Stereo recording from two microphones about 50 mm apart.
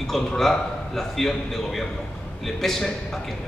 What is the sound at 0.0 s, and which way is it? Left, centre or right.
A man's voice, centre.